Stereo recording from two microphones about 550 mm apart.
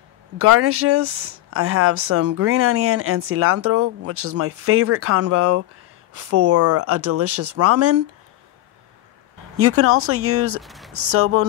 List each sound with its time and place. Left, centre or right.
0.4 s speech: right
9.6 s speech: right
10.6 s speech: centre
11.0 s speech: right